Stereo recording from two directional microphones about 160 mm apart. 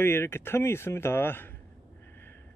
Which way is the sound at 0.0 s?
15° left (ahead or behind).